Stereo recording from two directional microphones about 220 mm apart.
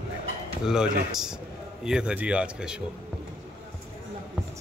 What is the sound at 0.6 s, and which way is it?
Speech, 5° right (ahead or behind).